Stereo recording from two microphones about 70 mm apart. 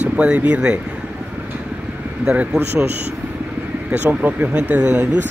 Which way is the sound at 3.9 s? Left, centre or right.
Right.